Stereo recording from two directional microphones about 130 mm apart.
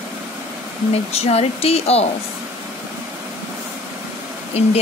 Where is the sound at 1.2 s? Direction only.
55° left (ahead or behind).